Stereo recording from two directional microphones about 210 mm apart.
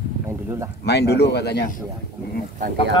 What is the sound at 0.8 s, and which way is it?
Speech, 50° left (ahead or behind).